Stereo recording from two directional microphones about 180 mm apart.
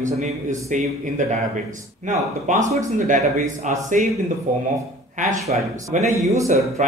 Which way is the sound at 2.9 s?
45° right (ahead or behind).